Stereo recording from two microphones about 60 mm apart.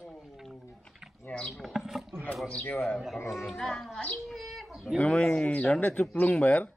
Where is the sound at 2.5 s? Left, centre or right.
Left.